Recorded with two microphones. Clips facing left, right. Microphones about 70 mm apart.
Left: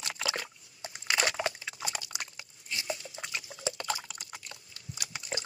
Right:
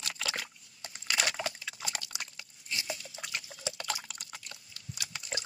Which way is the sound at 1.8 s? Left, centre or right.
Centre.